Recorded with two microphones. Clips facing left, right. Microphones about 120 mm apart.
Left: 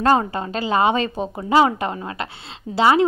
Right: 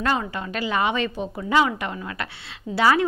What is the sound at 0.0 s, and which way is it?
A woman's voice, 40° left (ahead or behind).